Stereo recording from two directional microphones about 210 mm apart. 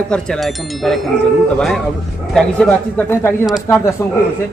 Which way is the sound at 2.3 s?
5° left (ahead or behind).